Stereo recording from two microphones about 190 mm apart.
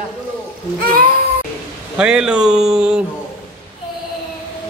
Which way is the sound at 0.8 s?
50° right (ahead or behind).